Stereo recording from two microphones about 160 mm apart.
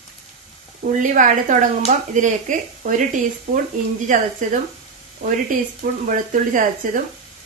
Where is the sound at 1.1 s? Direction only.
50° right (ahead or behind).